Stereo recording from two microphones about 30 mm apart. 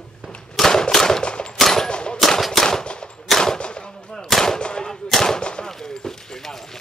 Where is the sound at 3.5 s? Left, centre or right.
Left.